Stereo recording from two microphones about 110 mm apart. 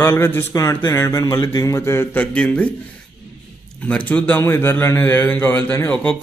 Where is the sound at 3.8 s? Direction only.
10° left (ahead or behind).